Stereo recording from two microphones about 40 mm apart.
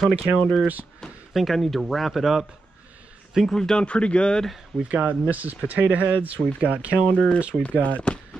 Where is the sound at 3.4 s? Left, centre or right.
Centre.